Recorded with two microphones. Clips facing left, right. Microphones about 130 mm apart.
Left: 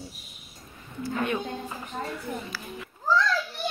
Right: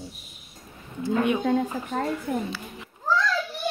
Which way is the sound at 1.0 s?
15° right (ahead or behind).